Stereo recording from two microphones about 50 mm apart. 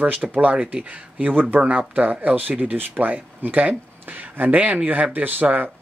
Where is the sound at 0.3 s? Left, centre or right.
Right.